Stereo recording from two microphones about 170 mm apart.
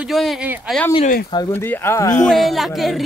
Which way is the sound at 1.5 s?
10° left (ahead or behind).